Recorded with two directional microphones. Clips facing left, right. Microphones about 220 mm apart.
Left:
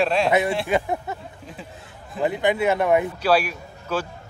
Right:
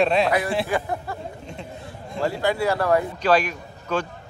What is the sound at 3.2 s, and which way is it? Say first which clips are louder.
Speech: even; 10° left (ahead or behind).